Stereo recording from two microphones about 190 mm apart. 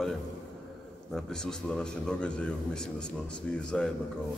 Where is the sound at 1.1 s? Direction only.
5° left (ahead or behind).